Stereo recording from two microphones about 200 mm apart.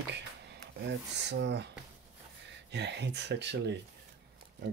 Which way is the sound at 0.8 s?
60° right (ahead or behind).